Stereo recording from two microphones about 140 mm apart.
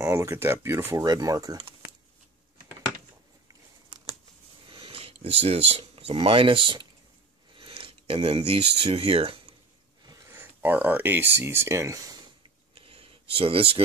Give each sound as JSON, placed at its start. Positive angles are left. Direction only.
{"t": 0.0, "sound": "speech", "side_deg": -20}
{"t": 4.6, "sound": "speech", "side_deg": -40}
{"t": 10.0, "sound": "speech", "side_deg": -20}
{"t": 12.7, "sound": "a sound", "side_deg": -40}